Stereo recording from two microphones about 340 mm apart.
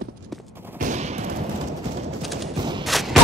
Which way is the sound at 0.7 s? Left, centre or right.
Right.